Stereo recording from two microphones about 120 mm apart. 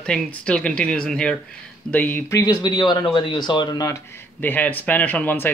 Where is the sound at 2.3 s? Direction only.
35° left (ahead or behind).